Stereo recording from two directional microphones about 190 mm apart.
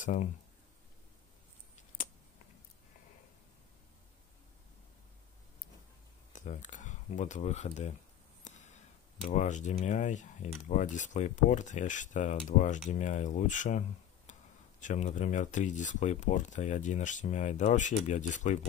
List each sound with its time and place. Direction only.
0.0 s speech: 45° left (ahead or behind)
6.3 s speech: 40° left (ahead or behind)
8.5 s a sound: 40° left (ahead or behind)
9.2 s speech: 40° left (ahead or behind)